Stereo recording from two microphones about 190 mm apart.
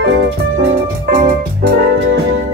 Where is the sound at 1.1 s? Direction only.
50° right (ahead or behind).